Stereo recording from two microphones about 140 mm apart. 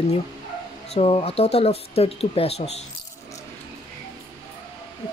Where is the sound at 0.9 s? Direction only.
45° left (ahead or behind).